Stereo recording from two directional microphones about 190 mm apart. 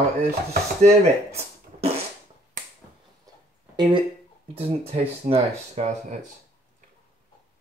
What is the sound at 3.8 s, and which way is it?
Speech, 25° right (ahead or behind).